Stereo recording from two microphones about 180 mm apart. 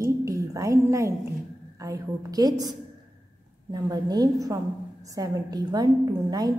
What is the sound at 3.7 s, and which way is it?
A woman's voice, 20° right (ahead or behind).